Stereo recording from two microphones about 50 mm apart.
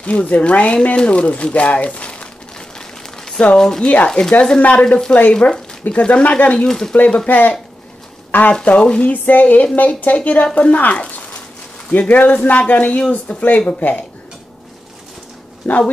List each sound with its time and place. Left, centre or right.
0.0 s speech: left
3.5 s speech: centre
3.8 s speech: left
4.1 s speech: centre
5.1 s speech: left
8.6 s speech: left
9.1 s speech: left
15.7 s speech: left